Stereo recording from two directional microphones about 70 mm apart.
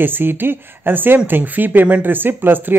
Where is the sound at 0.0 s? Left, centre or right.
Right.